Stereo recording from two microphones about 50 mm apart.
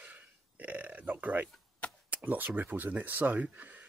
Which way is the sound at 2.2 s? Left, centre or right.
Right.